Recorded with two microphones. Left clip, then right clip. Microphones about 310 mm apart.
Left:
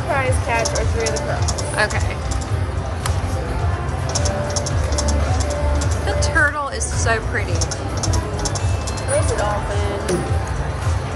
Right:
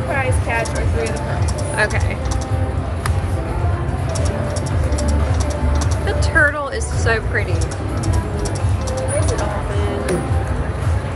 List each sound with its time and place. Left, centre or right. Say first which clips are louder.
0.1 s a sound: left 1 dB; left
1.8 s speech: right 1 dB; centre
6.0 s music: right 2 dB; centre